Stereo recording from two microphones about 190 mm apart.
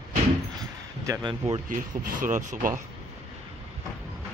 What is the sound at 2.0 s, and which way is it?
Speech, 45° right (ahead or behind).